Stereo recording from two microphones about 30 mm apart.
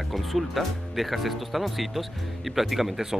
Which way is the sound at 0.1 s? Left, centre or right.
Centre.